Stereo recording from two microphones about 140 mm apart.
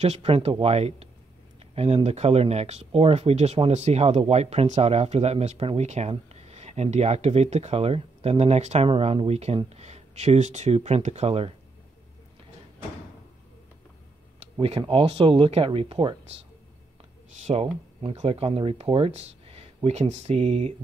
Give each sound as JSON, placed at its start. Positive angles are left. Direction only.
{"t": 0.0, "sound": "speech", "side_deg": -50}
{"t": 14.6, "sound": "speech", "side_deg": -40}
{"t": 17.4, "sound": "speech", "side_deg": -55}
{"t": 18.1, "sound": "speech", "side_deg": -45}